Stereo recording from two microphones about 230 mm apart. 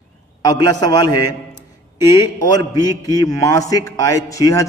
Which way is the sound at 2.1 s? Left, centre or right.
Centre.